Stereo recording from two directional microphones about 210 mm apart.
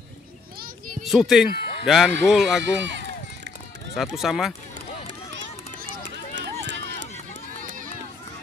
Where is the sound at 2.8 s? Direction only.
60° right (ahead or behind).